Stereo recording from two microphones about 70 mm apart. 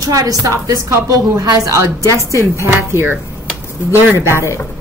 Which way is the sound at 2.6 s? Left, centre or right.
Right.